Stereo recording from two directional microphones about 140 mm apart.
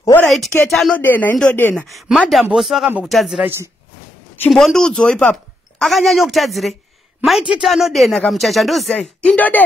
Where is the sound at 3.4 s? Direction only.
20° right (ahead or behind).